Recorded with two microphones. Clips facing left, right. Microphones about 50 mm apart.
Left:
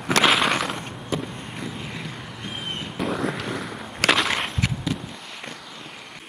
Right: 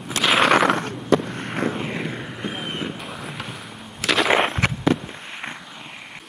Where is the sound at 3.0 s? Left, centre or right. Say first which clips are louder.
Left 8 dB; left.